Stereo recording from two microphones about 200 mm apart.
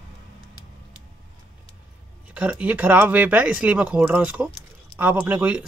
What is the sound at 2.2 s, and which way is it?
Speech, 5° right (ahead or behind).